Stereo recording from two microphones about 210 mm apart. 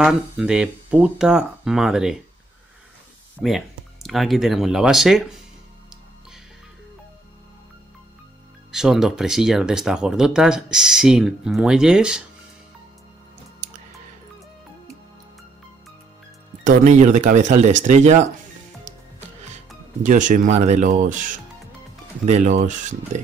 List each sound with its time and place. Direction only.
0.0 s speech: 5° right (ahead or behind)
3.3 s speech: centre (ahead or behind)
8.7 s speech: centre (ahead or behind)
16.6 s speech: 35° right (ahead or behind)
20.0 s speech: 35° right (ahead or behind)